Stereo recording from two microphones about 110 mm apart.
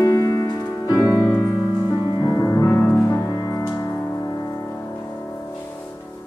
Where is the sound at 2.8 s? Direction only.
15° left (ahead or behind).